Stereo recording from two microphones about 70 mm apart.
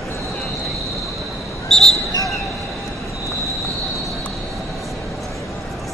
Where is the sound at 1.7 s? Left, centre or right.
Centre.